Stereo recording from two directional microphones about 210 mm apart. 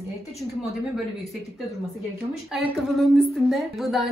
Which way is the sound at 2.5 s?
Centre (ahead or behind).